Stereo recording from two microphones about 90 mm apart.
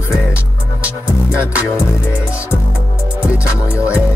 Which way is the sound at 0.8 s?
15° right (ahead or behind).